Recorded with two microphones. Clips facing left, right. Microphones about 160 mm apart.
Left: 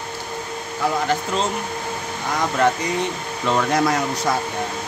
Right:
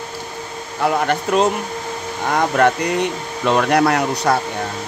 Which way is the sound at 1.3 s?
65° right (ahead or behind).